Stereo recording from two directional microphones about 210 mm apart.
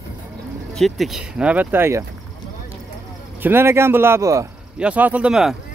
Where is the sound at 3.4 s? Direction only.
10° right (ahead or behind).